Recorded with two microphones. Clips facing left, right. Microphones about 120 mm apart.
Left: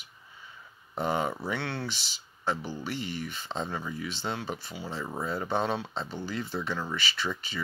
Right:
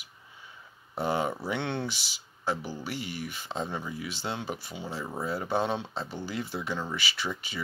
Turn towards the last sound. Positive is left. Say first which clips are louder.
# left 1 dB
turn(degrees=-10)  # may be behind; listen again after turning